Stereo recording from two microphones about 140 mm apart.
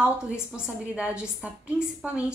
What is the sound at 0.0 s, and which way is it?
A woman's voice, 10° right (ahead or behind).